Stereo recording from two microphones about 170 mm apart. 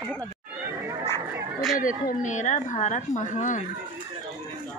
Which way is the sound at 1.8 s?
55° left (ahead or behind).